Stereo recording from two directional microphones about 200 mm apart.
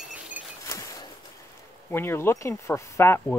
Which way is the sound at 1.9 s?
10° left (ahead or behind).